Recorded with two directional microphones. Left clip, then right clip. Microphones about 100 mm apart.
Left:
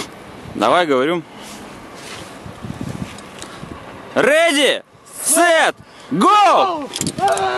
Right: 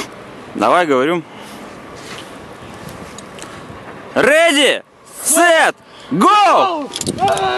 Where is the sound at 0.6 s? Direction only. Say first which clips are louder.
Right 2 dB; 5° left (ahead or behind).